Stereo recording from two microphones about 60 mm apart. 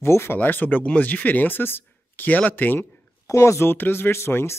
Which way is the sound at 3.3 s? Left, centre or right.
Left.